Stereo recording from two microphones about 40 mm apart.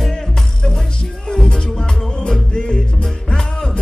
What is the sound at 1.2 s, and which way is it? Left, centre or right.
Music, left.